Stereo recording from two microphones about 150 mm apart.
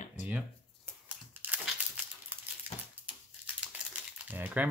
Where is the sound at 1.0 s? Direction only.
10° right (ahead or behind).